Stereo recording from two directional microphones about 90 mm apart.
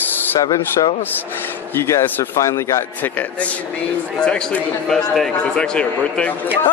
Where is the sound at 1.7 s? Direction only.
30° left (ahead or behind).